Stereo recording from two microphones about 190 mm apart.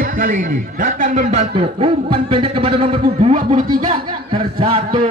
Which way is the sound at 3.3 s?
40° right (ahead or behind).